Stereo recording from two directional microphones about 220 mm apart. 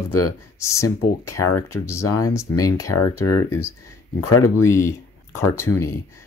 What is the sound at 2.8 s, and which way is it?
Speech, 90° left.